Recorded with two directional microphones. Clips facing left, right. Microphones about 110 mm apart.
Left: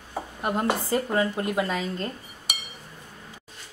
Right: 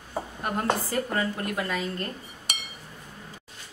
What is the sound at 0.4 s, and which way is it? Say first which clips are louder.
A woman's voice: left 2 dB; 20° left (ahead or behind).